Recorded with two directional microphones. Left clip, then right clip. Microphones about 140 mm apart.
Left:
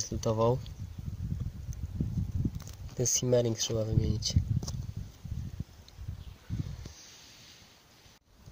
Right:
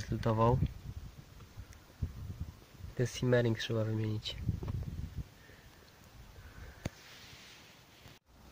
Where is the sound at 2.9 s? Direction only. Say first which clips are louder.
Left 4 dB; 30° left (ahead or behind).